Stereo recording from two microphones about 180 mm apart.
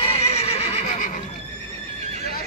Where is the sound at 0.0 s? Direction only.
35° left (ahead or behind).